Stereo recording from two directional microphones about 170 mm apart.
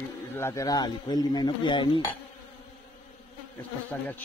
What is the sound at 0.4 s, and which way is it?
Cutlery, 15° left (ahead or behind).